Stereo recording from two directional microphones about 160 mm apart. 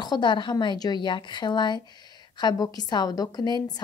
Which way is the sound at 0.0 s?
25° left (ahead or behind).